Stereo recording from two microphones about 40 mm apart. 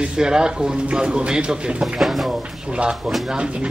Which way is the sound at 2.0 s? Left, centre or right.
Centre.